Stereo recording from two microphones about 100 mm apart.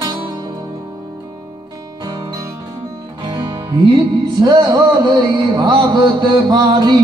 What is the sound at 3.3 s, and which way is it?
Music, 40° right (ahead or behind).